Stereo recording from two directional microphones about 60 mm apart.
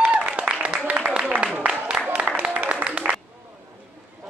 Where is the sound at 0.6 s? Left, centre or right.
Right.